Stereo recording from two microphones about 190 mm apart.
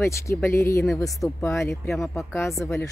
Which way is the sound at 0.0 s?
15° left (ahead or behind).